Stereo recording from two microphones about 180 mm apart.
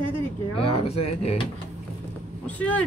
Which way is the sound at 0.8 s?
35° left (ahead or behind).